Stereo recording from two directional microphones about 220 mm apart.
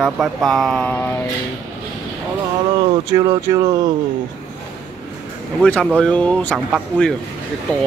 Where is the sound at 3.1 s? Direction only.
15° right (ahead or behind).